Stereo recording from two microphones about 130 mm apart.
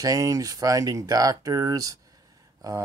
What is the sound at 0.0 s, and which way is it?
Speech, 25° right (ahead or behind).